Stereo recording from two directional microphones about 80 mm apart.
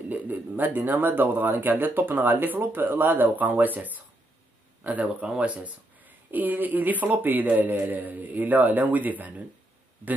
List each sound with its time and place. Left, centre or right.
0.1 s speech: right